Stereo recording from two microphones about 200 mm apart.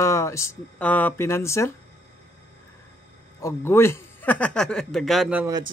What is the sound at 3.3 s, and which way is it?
A man's voice, 15° left (ahead or behind).